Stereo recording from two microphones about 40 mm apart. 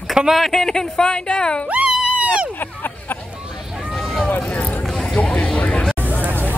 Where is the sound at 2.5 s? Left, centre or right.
Left.